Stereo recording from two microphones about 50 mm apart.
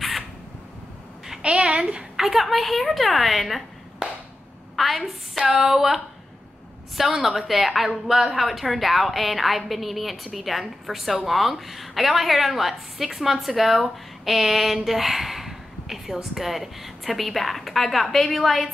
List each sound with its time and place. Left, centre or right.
1.4 s a sound: centre
2.1 s a woman's voice: centre
7.0 s a woman's voice: centre